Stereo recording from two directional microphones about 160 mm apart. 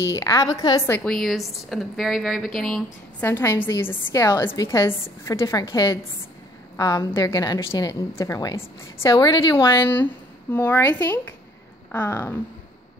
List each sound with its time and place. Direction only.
0.1 s a woman's voice: 20° left (ahead or behind)
0.8 s a woman's voice: 10° left (ahead or behind)
1.1 s speech: centre (ahead or behind)
3.3 s a woman's voice: 15° left (ahead or behind)
9.6 s a woman's voice: 15° left (ahead or behind)